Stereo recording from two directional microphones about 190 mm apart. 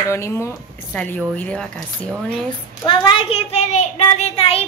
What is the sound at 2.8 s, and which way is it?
A child's voice, 25° left (ahead or behind).